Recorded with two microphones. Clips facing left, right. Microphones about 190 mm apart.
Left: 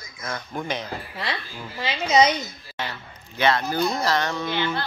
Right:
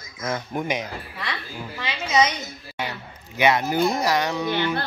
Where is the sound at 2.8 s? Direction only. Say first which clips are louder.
Right 1 dB; 15° right (ahead or behind).